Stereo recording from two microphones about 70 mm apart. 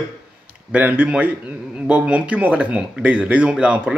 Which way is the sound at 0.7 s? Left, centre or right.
Right.